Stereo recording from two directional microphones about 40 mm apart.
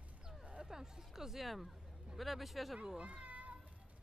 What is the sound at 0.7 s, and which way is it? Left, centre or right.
Hubbub, centre.